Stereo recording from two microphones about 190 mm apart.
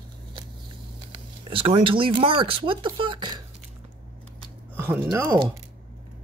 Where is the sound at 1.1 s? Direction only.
30° right (ahead or behind).